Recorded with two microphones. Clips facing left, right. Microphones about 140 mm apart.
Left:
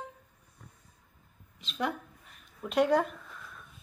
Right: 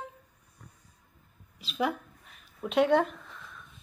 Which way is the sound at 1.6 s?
5° right (ahead or behind).